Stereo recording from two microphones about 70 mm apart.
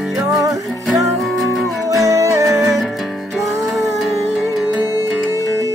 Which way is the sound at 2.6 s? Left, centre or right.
Centre.